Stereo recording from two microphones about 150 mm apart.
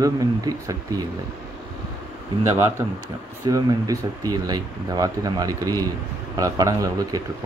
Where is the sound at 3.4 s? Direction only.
25° right (ahead or behind).